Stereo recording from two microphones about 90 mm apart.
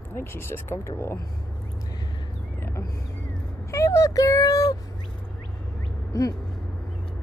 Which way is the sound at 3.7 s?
35° left (ahead or behind).